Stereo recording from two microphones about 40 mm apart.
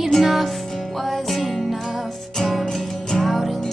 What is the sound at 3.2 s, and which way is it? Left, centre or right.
Music, centre.